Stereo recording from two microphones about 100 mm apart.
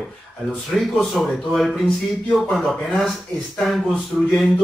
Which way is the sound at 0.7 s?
Centre (ahead or behind).